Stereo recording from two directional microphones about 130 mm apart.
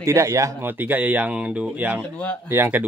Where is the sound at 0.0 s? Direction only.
25° right (ahead or behind).